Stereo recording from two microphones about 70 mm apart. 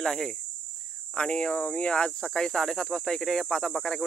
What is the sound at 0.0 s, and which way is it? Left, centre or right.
Speech, centre.